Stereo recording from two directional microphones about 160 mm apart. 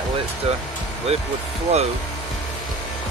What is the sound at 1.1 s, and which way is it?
Speech, 40° right (ahead or behind).